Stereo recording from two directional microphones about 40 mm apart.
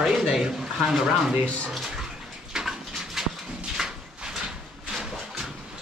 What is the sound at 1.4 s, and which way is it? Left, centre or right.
Speech, left.